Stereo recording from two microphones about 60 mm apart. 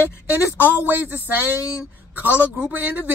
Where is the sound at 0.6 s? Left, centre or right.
Right.